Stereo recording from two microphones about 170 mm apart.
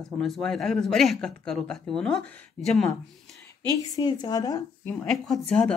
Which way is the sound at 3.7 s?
25° left (ahead or behind).